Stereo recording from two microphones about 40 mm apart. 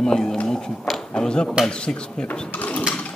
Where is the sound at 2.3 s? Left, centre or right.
Left.